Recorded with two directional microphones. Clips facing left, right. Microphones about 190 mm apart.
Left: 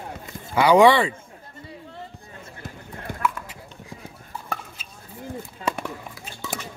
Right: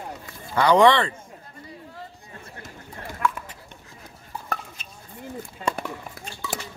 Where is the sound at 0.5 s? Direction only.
10° left (ahead or behind).